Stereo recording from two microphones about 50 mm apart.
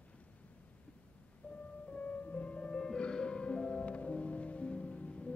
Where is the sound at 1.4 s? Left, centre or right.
Left.